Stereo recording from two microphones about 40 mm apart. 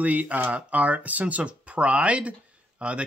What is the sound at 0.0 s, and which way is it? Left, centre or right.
A man's voice, right.